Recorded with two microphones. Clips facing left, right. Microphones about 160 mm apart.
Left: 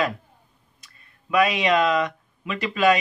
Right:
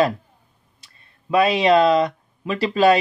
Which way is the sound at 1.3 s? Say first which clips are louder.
Right 4 dB; 30° right (ahead or behind).